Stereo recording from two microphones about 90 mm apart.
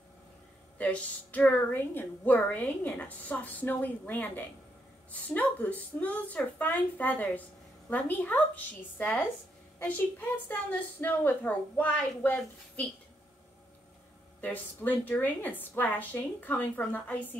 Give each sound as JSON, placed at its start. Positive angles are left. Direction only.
{"t": 0.7, "sound": "a woman's voice", "side_deg": 15}
{"t": 14.4, "sound": "a woman's voice", "side_deg": 20}